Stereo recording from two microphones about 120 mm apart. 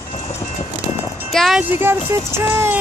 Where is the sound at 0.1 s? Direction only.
65° left (ahead or behind).